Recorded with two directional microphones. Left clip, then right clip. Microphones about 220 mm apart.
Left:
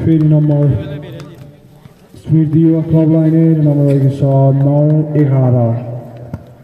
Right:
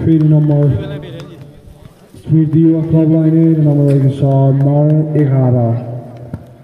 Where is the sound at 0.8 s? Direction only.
30° right (ahead or behind).